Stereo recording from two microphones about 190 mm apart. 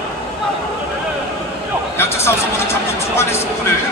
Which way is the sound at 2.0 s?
15° left (ahead or behind).